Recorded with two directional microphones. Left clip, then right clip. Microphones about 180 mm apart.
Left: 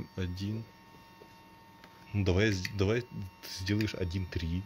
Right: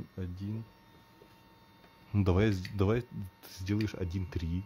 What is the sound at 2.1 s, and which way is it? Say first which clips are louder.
Speech: left 1 dB; 25° right (ahead or behind).